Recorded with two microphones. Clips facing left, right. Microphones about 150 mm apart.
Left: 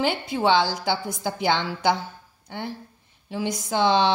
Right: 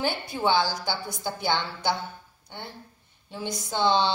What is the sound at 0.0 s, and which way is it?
Speech, 90° left.